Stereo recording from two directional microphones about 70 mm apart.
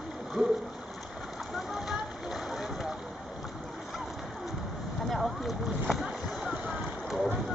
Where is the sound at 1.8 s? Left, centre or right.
Centre.